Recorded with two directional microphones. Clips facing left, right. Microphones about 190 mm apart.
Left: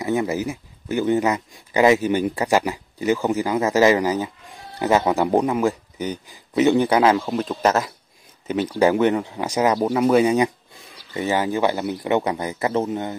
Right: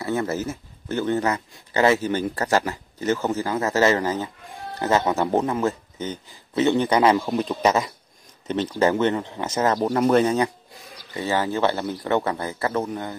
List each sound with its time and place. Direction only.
0.0 s speech: 15° left (ahead or behind)